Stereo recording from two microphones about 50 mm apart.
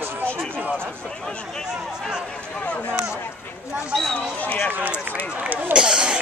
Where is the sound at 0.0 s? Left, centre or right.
Right.